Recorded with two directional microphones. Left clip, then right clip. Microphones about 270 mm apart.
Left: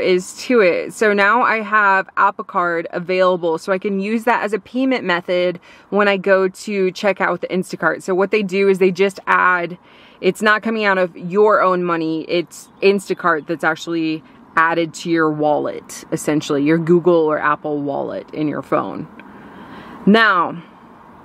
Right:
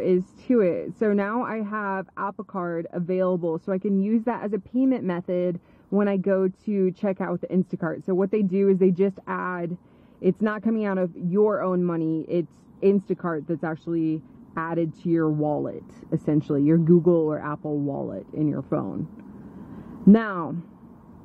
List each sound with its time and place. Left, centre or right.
0.0 s speech: centre
17.6 s speech: left
18.1 s speech: centre
19.7 s a sound: centre